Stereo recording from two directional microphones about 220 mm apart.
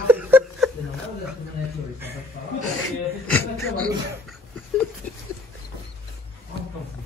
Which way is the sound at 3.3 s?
5° left (ahead or behind).